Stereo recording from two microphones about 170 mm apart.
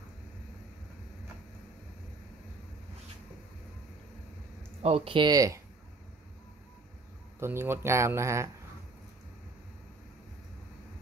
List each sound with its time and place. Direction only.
4.8 s speech: 35° right (ahead or behind)
7.3 s speech: 15° right (ahead or behind)